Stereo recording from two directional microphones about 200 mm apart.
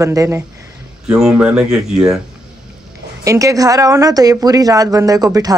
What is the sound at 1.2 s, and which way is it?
Speech, 5° right (ahead or behind).